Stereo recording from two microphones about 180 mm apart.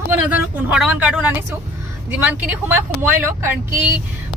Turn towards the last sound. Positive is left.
turn(degrees=-15)  # may be behind; listen again after turning